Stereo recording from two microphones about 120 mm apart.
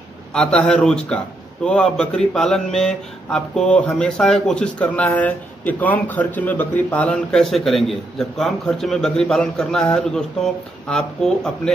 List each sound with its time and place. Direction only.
0.3 s a man's voice: 5° left (ahead or behind)